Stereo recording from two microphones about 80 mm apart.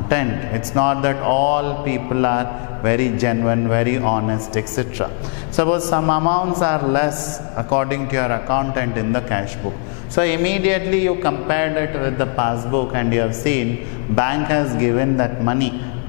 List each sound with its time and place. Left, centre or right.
0.1 s mantra: centre